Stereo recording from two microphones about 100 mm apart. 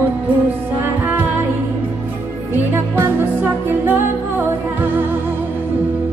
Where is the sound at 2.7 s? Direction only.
20° right (ahead or behind).